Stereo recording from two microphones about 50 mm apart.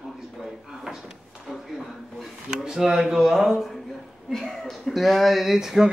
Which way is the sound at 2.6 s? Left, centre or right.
Centre.